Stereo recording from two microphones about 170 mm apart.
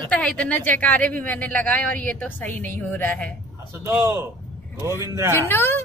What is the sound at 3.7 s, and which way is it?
A man's voice, 15° right (ahead or behind).